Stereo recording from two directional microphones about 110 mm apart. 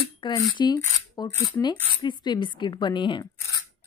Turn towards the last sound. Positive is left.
turn(degrees=45)  # may be behind; listen again after turning